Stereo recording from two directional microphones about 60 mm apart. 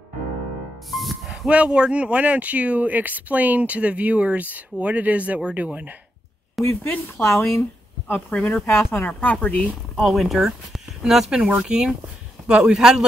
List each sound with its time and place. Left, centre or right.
0.9 s music: centre
1.5 s speech: centre
6.6 s speech: left
8.3 s speech: centre
8.6 s speech: left
9.2 s speech: left
9.9 s a man's voice: centre